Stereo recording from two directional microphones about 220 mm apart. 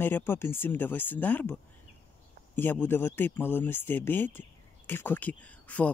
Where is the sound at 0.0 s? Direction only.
10° left (ahead or behind).